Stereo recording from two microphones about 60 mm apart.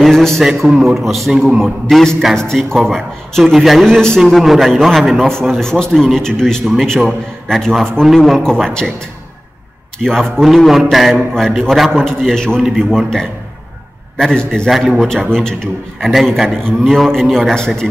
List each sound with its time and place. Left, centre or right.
0.0 s a sound: centre
0.4 s a man's voice: centre
3.8 s a man's voice: centre
4.2 s a man's voice: centre
10.0 s a man's voice: centre
14.7 s a man's voice: centre
15.2 s a man's voice: centre
16.1 s a man's voice: centre
16.4 s a man's voice: centre